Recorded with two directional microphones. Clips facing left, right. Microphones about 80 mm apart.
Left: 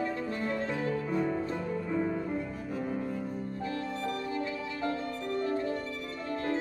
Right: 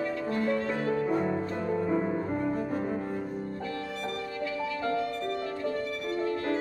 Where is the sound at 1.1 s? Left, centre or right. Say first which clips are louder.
Right 2 dB; right.